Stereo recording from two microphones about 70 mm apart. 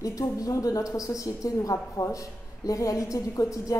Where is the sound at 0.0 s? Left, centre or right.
Left.